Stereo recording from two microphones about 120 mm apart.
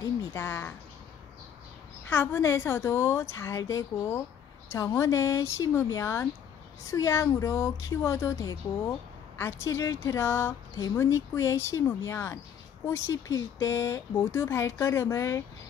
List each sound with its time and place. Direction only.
0.0 s speech: 20° left (ahead or behind)
2.0 s a woman's voice: 20° left (ahead or behind)